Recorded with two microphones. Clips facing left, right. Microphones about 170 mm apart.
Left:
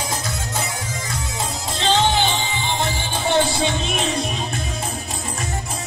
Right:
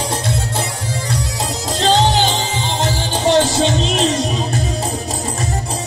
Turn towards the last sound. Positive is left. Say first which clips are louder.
# right 6 dB
turn(degrees=-90)